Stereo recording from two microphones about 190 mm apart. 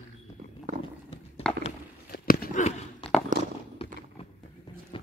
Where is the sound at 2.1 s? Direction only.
50° left (ahead or behind).